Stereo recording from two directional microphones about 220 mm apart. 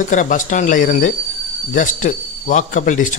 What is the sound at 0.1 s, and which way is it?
A man's voice, 35° left (ahead or behind).